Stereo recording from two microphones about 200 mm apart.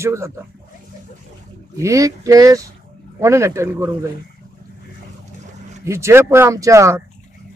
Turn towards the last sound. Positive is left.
turn(degrees=-15)  # may be behind; listen again after turning